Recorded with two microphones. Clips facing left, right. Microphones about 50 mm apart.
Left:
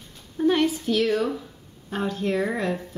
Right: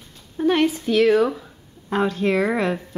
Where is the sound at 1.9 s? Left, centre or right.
Right.